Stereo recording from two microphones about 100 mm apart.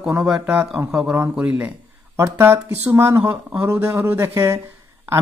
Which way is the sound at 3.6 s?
30° right (ahead or behind).